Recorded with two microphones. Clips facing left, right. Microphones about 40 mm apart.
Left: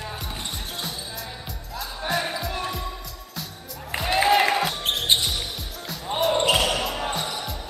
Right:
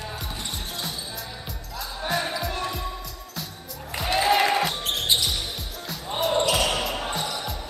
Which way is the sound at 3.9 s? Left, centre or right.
Left.